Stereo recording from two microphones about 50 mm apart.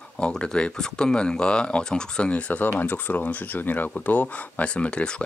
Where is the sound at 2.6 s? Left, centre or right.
Left.